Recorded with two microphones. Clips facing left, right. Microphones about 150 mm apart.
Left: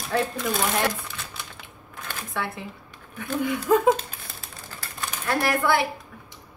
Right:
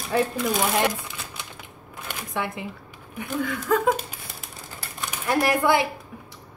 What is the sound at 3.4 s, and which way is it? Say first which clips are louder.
Speech: left 3 dB; 20° left (ahead or behind).